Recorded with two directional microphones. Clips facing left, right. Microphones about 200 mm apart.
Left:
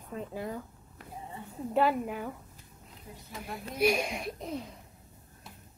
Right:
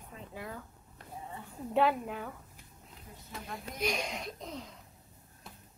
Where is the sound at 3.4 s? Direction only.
10° left (ahead or behind).